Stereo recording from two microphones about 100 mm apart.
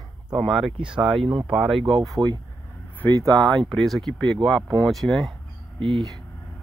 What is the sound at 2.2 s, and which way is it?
Speech, 40° right (ahead or behind).